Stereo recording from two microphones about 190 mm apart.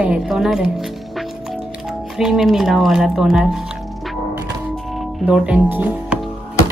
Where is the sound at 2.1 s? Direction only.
Centre (ahead or behind).